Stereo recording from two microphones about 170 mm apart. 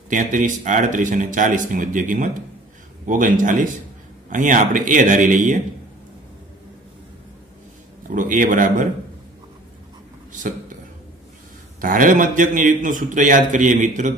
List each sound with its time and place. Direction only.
0.1 s a man's voice: 50° right (ahead or behind)
8.1 s a man's voice: 50° right (ahead or behind)
11.8 s a man's voice: 50° right (ahead or behind)